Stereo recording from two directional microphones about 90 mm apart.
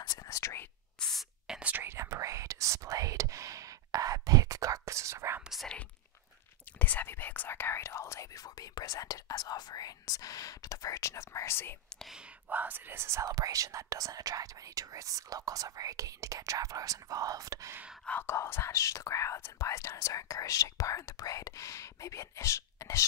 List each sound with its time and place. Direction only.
0.0 s whispering: 45° left (ahead or behind)
0.4 s whispering: 30° left (ahead or behind)
0.9 s spray: 5° left (ahead or behind)
1.5 s whispering: 15° right (ahead or behind)
1.8 s whispering: 30° right (ahead or behind)
5.5 s whispering: centre (ahead or behind)
6.8 s speech: 20° left (ahead or behind)
12.4 s speech: 20° right (ahead or behind); by 17.7 s 40° right (ahead or behind)
18.2 s speech: 30° left (ahead or behind)